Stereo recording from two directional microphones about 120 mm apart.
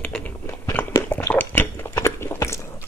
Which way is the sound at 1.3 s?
15° left (ahead or behind).